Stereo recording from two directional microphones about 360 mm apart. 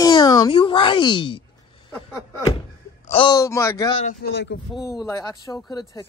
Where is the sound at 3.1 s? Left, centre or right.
Centre.